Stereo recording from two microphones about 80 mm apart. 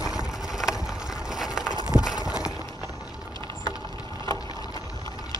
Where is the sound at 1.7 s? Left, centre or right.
Right.